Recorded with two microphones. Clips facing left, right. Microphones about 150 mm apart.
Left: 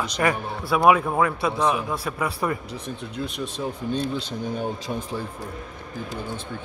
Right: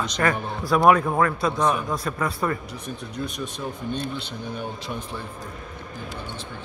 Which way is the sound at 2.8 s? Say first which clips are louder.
Even; 25° left (ahead or behind).